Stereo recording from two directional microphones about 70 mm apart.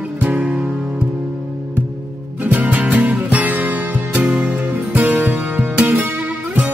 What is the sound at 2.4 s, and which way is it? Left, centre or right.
Music, right.